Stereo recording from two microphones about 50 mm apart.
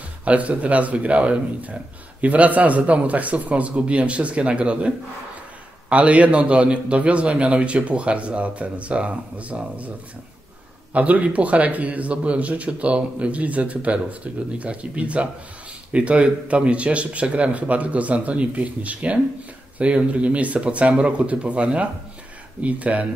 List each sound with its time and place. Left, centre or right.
0.2 s a man's voice: right